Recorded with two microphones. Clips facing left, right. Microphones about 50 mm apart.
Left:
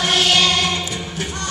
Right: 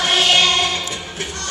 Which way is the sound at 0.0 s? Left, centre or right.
Centre.